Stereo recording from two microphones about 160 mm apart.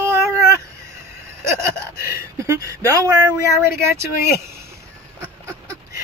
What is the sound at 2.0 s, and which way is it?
Speech, 20° right (ahead or behind).